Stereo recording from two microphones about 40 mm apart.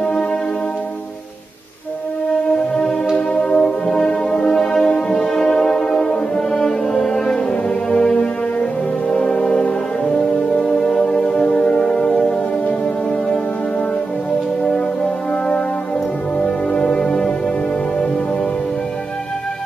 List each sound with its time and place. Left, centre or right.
2.5 s music: centre
12.6 s music: left
16.4 s music: left